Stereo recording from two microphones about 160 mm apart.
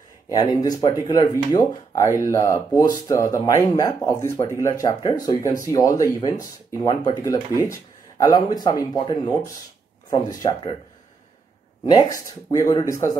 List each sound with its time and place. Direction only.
0.3 s speech: 25° left (ahead or behind)
11.9 s speech: 25° left (ahead or behind)